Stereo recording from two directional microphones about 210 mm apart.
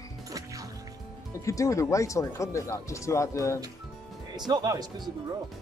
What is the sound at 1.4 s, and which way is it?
Speech, 15° left (ahead or behind).